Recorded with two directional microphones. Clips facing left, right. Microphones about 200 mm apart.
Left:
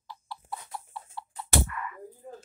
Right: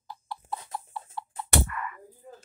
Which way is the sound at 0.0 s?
50° right (ahead or behind).